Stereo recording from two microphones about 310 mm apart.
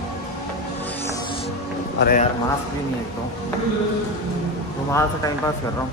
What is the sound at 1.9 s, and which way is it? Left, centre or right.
Speech, left.